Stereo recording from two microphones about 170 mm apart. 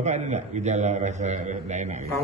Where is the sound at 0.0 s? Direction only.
40° right (ahead or behind).